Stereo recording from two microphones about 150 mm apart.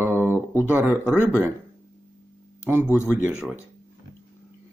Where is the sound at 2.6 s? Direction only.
15° right (ahead or behind).